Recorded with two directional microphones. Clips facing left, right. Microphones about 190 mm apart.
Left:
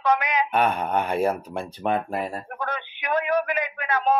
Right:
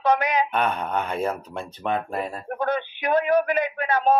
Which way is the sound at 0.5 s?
10° left (ahead or behind).